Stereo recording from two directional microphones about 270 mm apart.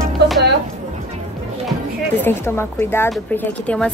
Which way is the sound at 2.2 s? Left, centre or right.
Centre.